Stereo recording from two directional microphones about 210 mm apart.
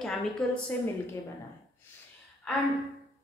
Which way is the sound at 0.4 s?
5° left (ahead or behind).